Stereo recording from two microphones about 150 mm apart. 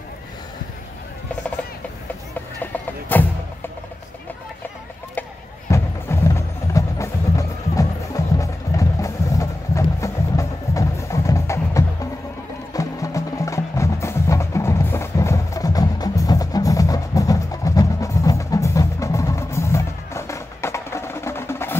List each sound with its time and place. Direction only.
2.6 s music: 10° left (ahead or behind)
5.7 s wood block: 20° left (ahead or behind)
8.4 s music: 20° left (ahead or behind)